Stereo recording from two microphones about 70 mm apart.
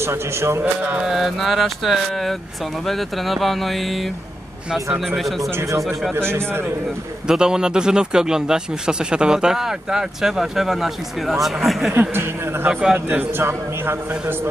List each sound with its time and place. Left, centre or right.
0.0 s a man's voice: right
0.8 s speech: centre
1.1 s speech: centre
5.6 s speech: right
6.1 s a man's voice: right
7.2 s speech: centre
11.9 s a man's voice: right